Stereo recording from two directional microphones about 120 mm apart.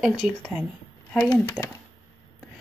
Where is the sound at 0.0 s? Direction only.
5° left (ahead or behind).